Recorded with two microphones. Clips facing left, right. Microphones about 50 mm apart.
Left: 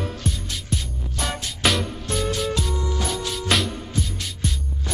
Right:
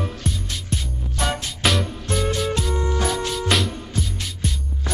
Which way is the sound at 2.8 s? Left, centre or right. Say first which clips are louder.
Right 4 dB; right.